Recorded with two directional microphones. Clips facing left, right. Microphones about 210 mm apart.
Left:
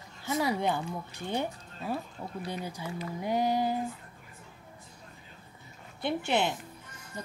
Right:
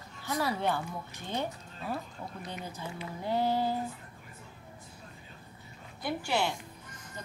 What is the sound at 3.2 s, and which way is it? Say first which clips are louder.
Speech: left 1 dB; 15° left (ahead or behind).